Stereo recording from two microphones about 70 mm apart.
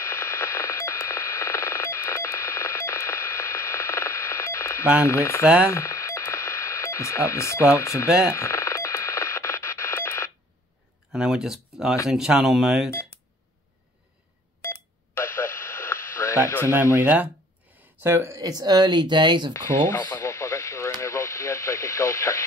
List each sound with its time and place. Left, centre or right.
0.0 s radio: left
5.0 s speech: left
5.7 s radio: left
11.1 s speech: centre
14.6 s radio: left
16.9 s speech: right
18.0 s speech: right
18.3 s speech: right
19.5 s speech: left
20.1 s radio: left